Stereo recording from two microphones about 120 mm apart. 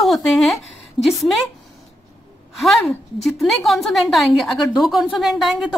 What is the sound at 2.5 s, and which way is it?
A woman's voice, centre (ahead or behind).